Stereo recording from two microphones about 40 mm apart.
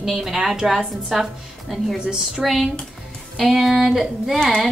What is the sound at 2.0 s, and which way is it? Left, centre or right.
Speech, right.